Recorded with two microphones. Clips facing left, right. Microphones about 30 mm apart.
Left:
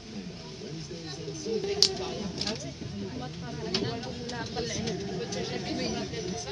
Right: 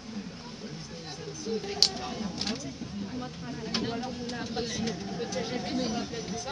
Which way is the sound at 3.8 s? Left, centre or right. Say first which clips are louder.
Right 1 dB; centre.